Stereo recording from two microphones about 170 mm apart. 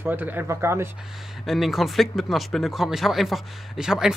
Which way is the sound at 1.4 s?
Centre (ahead or behind).